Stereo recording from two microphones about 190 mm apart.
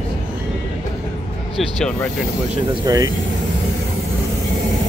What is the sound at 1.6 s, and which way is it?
Speech, centre (ahead or behind).